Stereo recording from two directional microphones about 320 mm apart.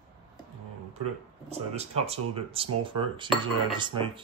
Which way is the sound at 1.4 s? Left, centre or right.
Centre.